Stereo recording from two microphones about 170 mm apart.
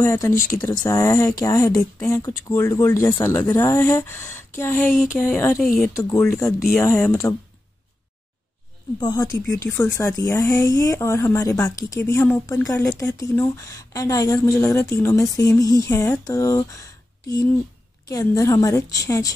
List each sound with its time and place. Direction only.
0.0 s a woman's voice: 15° left (ahead or behind)
6.9 s speech: 5° left (ahead or behind)
9.0 s a woman's voice: 25° left (ahead or behind)
9.6 s a woman's voice: 15° left (ahead or behind)